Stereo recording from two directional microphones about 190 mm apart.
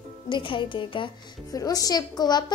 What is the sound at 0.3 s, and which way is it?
Speech, 25° left (ahead or behind).